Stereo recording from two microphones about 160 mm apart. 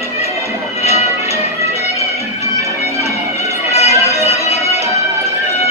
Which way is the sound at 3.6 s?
40° left (ahead or behind).